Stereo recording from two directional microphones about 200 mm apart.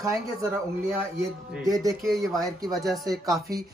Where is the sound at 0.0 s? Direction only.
15° right (ahead or behind).